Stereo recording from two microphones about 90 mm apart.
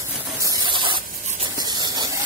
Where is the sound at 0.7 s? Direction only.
65° right (ahead or behind).